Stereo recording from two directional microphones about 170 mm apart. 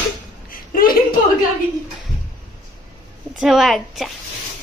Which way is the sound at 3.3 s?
Centre (ahead or behind).